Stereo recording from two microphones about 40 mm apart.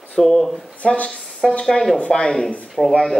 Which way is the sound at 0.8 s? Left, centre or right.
Left.